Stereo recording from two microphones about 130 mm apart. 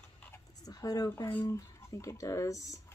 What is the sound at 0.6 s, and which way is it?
Speech, 30° left (ahead or behind).